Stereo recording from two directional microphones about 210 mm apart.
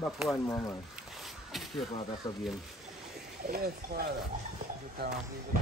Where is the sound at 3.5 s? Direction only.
45° right (ahead or behind).